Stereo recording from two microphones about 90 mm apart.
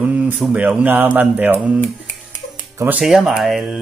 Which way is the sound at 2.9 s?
5° right (ahead or behind).